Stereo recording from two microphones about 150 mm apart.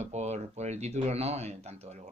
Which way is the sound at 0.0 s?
50° right (ahead or behind).